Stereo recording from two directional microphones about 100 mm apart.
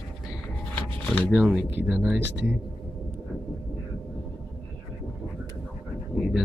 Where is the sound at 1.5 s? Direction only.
10° right (ahead or behind).